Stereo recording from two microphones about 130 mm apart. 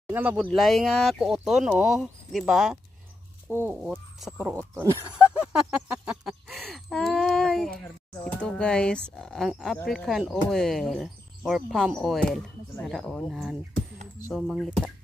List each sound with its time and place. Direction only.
0.0 s speech: 10° right (ahead or behind)
0.5 s speech: centre (ahead or behind)
3.4 s speech: 20° right (ahead or behind)
3.9 s speech: centre (ahead or behind)
4.4 s speech: 15° right (ahead or behind)
5.1 s speech: 5° right (ahead or behind)